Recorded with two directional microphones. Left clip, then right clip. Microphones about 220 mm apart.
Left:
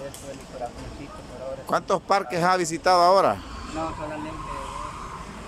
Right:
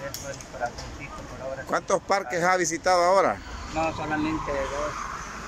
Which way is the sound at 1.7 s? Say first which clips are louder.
Left 2 dB; centre (ahead or behind).